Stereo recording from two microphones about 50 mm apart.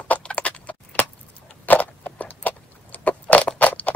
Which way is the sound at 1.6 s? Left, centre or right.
Left.